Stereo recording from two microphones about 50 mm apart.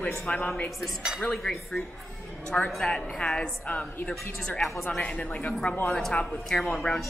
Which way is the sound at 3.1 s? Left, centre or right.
Centre.